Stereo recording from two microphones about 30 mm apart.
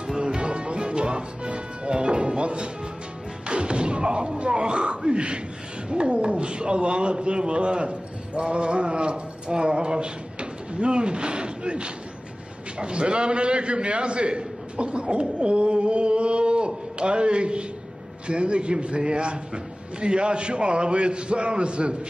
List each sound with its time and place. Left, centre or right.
0.2 s music: right
3.4 s thump: right
4.4 s a man's voice: right